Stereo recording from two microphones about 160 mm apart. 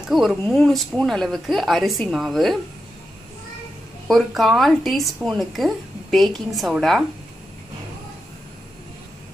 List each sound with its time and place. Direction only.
0.1 s a woman's voice: centre (ahead or behind)
4.1 s a woman's voice: centre (ahead or behind)